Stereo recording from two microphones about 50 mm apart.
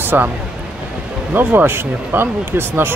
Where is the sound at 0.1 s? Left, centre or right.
Right.